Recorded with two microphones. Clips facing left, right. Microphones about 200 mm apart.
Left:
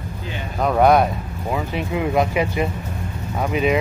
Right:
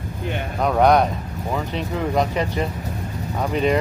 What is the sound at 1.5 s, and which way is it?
Speech, 10° left (ahead or behind).